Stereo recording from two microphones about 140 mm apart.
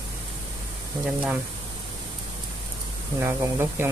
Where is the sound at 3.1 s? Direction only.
20° right (ahead or behind).